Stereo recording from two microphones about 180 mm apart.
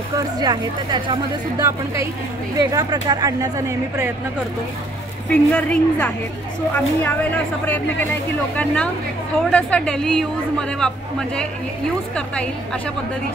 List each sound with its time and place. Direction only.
0.2 s speech: 20° right (ahead or behind)
5.3 s a woman's voice: 5° left (ahead or behind)